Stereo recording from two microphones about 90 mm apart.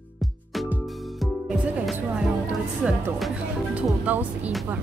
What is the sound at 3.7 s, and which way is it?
Speech, 15° right (ahead or behind).